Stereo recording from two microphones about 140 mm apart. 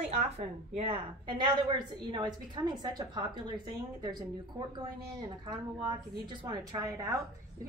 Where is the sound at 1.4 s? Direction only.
30° right (ahead or behind).